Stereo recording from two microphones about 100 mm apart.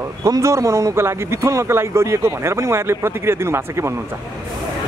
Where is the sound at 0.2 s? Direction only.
30° right (ahead or behind).